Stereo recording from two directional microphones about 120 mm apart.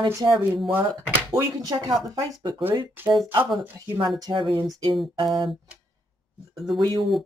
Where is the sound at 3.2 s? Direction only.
20° right (ahead or behind).